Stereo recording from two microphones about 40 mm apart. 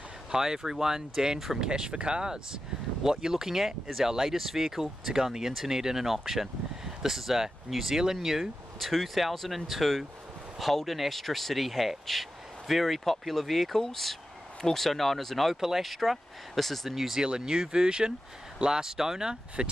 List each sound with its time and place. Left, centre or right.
0.3 s speech: centre
8.7 s speech: centre
15.5 s speech: centre
15.8 s speech: centre
17.2 s speech: centre
19.6 s speech: right